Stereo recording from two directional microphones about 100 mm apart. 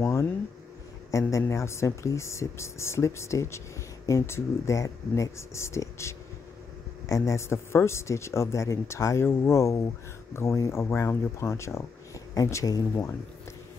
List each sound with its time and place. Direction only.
0.0 s speech: 30° left (ahead or behind)